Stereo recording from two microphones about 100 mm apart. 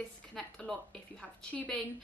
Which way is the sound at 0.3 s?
5° left (ahead or behind).